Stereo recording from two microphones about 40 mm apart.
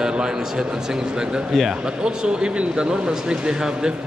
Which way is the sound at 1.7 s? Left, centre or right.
Centre.